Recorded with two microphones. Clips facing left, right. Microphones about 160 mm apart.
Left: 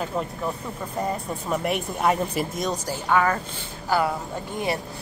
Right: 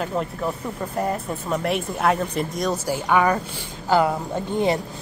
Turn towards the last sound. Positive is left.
turn(degrees=-20)  # may be behind; listen again after turning